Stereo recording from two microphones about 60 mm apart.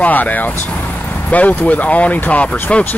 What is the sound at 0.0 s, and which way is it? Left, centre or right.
Speech, left.